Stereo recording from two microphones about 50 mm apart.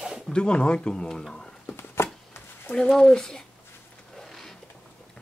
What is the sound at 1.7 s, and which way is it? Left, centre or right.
Chopping, left.